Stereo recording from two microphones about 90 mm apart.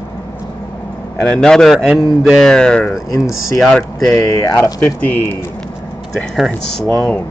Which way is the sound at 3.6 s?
5° left (ahead or behind).